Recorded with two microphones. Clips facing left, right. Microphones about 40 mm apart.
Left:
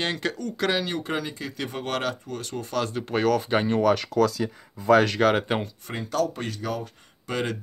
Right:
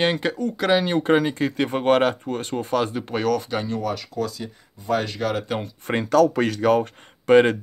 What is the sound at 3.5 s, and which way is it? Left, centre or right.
Speech, left.